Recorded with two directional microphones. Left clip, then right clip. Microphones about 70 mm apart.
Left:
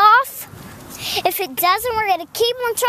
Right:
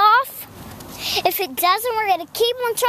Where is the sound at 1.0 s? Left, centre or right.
Centre.